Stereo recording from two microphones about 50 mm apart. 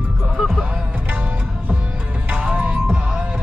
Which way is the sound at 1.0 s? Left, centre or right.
Right.